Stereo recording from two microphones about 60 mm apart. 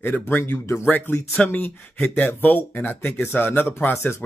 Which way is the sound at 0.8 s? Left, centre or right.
Left.